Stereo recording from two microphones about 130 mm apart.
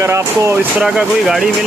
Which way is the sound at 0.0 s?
20° right (ahead or behind).